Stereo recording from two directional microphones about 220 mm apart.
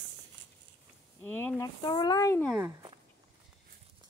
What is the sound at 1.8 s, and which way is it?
Speech, 20° left (ahead or behind).